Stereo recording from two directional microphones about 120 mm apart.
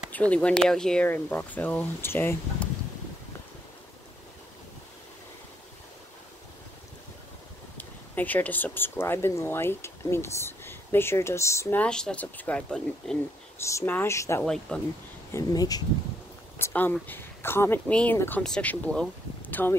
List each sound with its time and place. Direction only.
0.1 s speech: 10° left (ahead or behind)
1.0 s speech: 15° left (ahead or behind)
7.7 s speech: 15° left (ahead or behind)
11.8 s speech: 5° left (ahead or behind)
13.7 s speech: 20° left (ahead or behind)
14.4 s speech: 5° left (ahead or behind)
15.3 s speech: 30° left (ahead or behind)
16.5 s speech: 20° left (ahead or behind)